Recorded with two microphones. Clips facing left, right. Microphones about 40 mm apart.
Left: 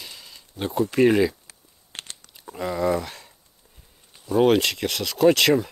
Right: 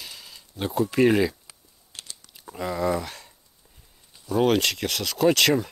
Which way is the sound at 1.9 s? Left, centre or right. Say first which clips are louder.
Left 4 dB; left.